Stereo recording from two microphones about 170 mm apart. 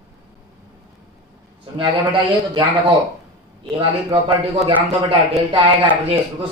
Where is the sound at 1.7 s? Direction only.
30° right (ahead or behind).